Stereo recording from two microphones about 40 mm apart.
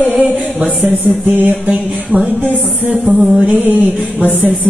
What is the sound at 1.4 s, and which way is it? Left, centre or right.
Music, right.